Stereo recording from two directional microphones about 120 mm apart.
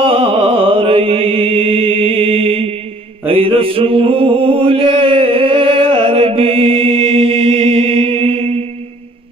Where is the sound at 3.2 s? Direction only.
50° right (ahead or behind).